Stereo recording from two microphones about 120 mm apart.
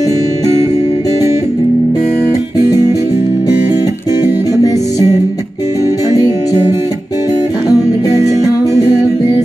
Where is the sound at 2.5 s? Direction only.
30° left (ahead or behind).